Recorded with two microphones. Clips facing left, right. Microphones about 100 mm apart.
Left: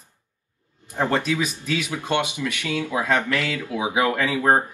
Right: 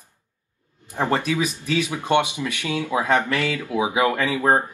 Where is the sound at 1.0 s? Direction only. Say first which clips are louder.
Right 1 dB; 15° right (ahead or behind).